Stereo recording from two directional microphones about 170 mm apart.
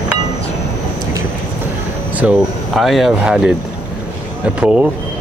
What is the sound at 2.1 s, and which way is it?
Speech, 5° right (ahead or behind).